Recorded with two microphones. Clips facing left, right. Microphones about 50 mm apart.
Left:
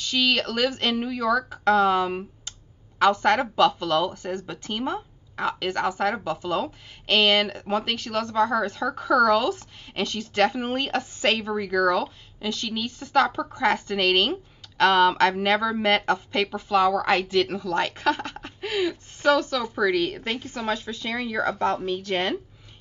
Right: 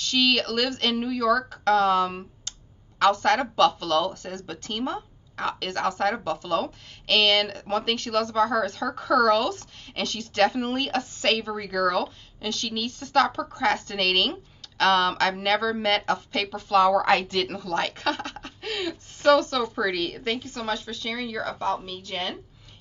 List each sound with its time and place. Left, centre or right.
0.0 s a woman's voice: centre
20.4 s a woman's voice: left